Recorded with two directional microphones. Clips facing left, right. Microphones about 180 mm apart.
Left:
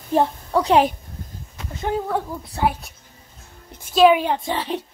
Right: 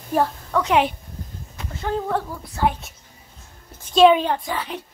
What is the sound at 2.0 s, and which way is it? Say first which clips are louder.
A woman's voice: even; 10° left (ahead or behind).